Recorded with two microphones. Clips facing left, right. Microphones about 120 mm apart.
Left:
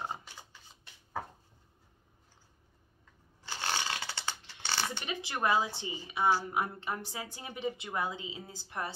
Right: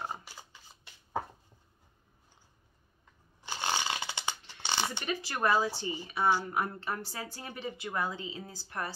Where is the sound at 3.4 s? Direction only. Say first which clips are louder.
Right 2 dB; 15° right (ahead or behind).